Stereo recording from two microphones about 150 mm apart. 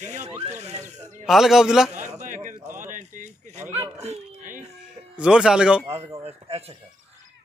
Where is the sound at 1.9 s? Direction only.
55° right (ahead or behind).